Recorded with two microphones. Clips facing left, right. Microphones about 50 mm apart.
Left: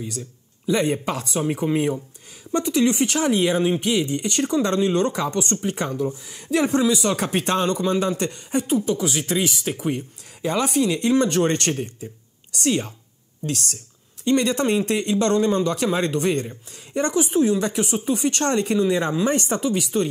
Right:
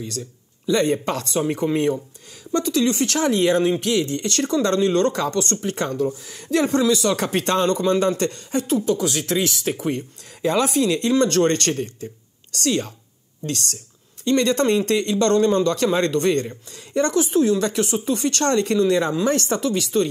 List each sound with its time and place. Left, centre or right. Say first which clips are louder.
0.7 s speech: right 2 dB; centre
2.5 s speech: even; left; by 11.0 s centre
11.0 s speech: right 1 dB; centre
14.2 s speech: right 1 dB; centre